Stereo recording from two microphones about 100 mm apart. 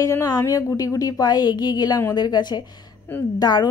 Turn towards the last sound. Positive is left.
turn(degrees=45)  # may be behind; listen again after turning